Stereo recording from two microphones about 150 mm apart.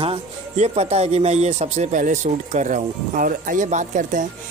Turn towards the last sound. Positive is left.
turn(degrees=-55)  # may be behind; listen again after turning